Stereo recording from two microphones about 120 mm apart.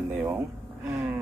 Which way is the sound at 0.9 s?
20° right (ahead or behind).